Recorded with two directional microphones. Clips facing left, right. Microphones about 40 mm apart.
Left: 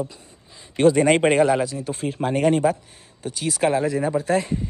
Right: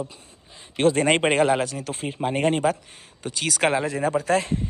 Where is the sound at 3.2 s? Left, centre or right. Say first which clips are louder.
Left 1 dB; right.